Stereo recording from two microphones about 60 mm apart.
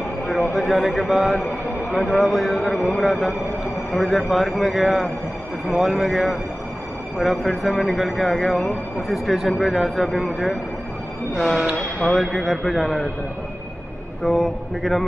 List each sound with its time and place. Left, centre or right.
0.3 s speech: centre
14.2 s speech: centre